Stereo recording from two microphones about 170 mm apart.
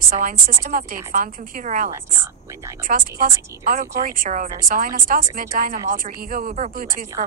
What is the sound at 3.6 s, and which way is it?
Speech, 55° right (ahead or behind).